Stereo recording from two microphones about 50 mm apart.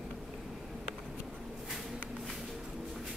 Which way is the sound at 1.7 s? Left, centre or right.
Centre.